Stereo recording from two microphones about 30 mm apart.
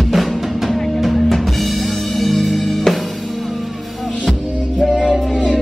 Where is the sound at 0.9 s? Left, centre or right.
Centre.